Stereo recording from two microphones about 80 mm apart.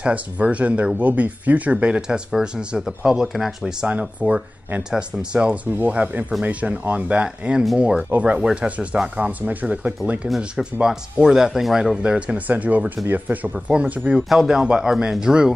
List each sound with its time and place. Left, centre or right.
0.0 s speech: centre
4.2 s speech: centre
14.1 s speech: centre